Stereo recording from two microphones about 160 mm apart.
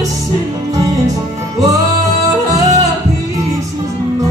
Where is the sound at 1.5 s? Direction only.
20° right (ahead or behind).